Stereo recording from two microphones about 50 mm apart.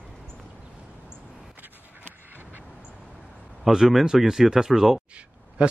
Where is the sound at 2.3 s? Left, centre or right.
Right.